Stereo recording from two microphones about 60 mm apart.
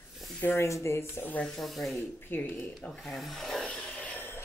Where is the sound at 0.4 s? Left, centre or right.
Left.